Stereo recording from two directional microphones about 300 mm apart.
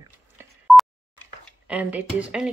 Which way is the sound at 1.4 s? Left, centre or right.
Centre.